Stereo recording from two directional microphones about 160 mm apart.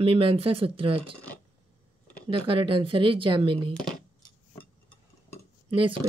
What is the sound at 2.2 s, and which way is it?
A woman's voice, 30° right (ahead or behind).